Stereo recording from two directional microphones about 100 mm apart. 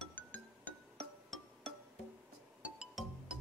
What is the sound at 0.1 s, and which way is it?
Music, 15° left (ahead or behind).